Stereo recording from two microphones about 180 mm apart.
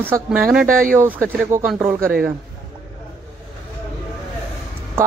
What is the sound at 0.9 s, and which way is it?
Speech, 10° right (ahead or behind).